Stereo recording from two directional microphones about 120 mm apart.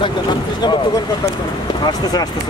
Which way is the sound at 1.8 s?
35° left (ahead or behind).